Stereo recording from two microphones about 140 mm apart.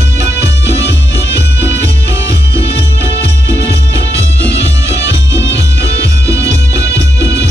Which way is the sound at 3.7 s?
20° right (ahead or behind).